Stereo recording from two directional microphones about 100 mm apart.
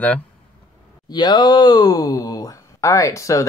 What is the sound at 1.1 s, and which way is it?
Speech, 45° left (ahead or behind).